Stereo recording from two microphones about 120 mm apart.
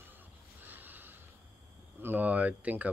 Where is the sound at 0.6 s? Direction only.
15° right (ahead or behind).